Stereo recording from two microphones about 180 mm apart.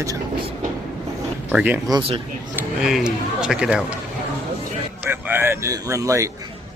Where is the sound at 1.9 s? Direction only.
30° right (ahead or behind).